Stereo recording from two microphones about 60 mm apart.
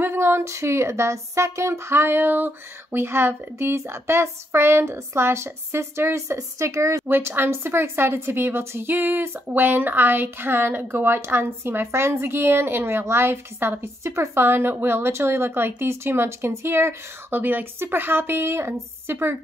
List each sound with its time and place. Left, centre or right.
0.0 s speech: right
6.3 s speech: right
7.1 s a woman's voice: right